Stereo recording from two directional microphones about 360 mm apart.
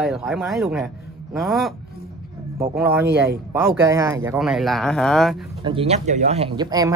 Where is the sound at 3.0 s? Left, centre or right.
Right.